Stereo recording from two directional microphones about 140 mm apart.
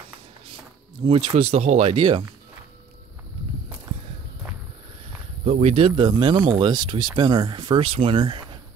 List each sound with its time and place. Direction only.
1.0 s speech: 40° right (ahead or behind)
5.4 s speech: 50° right (ahead or behind)